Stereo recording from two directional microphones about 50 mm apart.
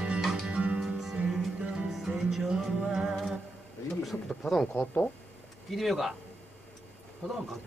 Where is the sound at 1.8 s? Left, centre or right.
Centre.